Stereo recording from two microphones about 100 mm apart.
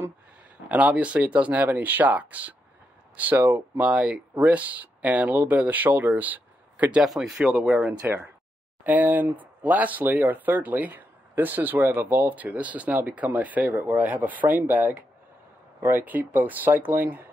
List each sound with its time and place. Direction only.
0.7 s speech: 15° right (ahead or behind)
7.0 s speech: 5° right (ahead or behind); by 17.3 s 20° right (ahead or behind)